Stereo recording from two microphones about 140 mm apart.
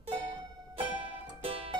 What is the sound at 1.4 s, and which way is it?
Music, 45° right (ahead or behind).